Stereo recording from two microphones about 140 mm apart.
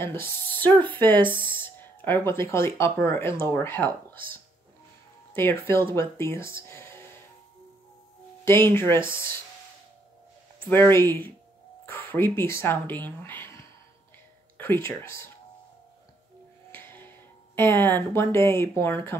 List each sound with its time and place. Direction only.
0.0 s speech: 15° left (ahead or behind)
8.5 s speech: 15° left (ahead or behind)
10.7 s speech: 15° left (ahead or behind)
16.7 s music: 15° left (ahead or behind)
17.6 s speech: 15° left (ahead or behind)